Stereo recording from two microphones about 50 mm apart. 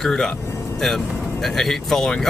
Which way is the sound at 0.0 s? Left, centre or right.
Centre.